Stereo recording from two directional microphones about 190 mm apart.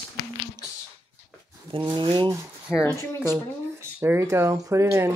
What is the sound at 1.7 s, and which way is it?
Speech, 25° right (ahead or behind).